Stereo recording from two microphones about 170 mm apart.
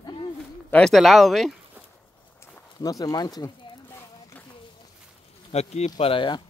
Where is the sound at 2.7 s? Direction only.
20° left (ahead or behind).